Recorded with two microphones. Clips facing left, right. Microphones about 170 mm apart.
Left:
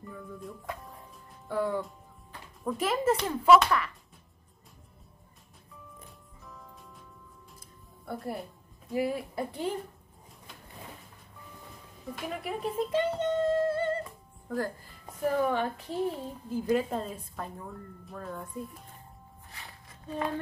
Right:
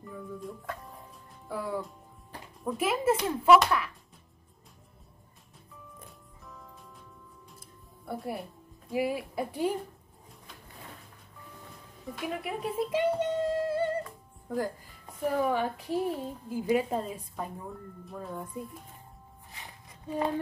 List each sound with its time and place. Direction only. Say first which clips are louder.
0.0 s speech: right 2 dB; centre (ahead or behind)
0.7 s music: even; centre (ahead or behind)
1.5 s speech: left 4 dB; 5° right (ahead or behind)
8.0 s a woman's voice: even; 5° right (ahead or behind)
12.1 s speech: right 1 dB; centre (ahead or behind)
15.2 s a woman's voice: even; 5° right (ahead or behind)
19.5 s a sound: right 1 dB; 20° right (ahead or behind)